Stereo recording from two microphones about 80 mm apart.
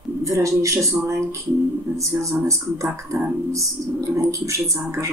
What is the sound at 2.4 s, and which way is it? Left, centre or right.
Speech, right.